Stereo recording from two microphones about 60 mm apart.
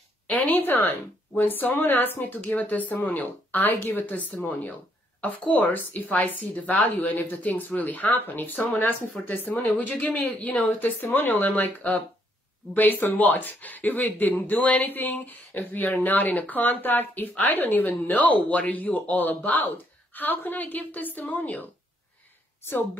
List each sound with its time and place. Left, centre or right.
0.3 s a woman's voice: left